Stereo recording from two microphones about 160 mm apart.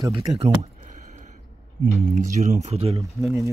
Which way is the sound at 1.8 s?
55° right (ahead or behind).